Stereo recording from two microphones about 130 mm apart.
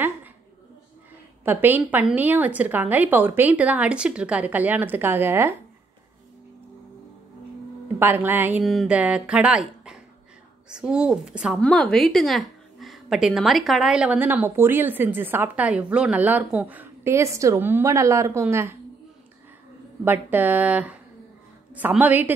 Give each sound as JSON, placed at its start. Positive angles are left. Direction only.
{"t": 1.4, "sound": "a woman's voice", "side_deg": -15}
{"t": 8.0, "sound": "a woman's voice", "side_deg": -15}
{"t": 11.6, "sound": "a woman's voice", "side_deg": 5}
{"t": 20.1, "sound": "a woman's voice", "side_deg": -15}